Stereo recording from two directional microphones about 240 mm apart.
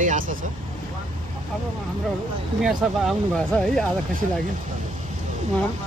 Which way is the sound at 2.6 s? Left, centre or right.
Centre.